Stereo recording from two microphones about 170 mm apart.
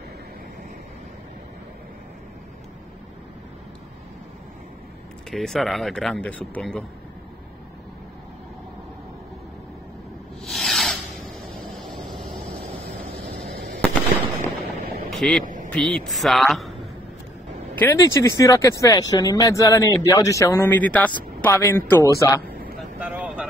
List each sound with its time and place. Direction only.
5.3 s speech: centre (ahead or behind)
10.4 s a sound: centre (ahead or behind)
15.0 s a sound: 5° left (ahead or behind)
15.4 s quack: 50° right (ahead or behind)
15.7 s speech: 5° left (ahead or behind)
17.7 s a man's voice: 15° left (ahead or behind)
22.8 s vehicle: 10° right (ahead or behind)